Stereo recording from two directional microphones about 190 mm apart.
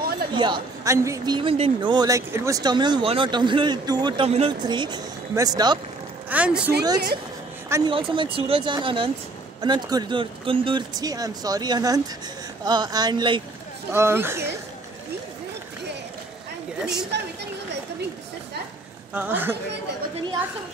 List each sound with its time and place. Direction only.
0.3 s a woman's voice: 25° right (ahead or behind)
6.3 s speech: 5° right (ahead or behind)
7.7 s a woman's voice: 25° right (ahead or behind)
13.9 s speech: 15° right (ahead or behind)
16.8 s a woman's voice: 5° right (ahead or behind)
19.1 s speech: 10° right (ahead or behind)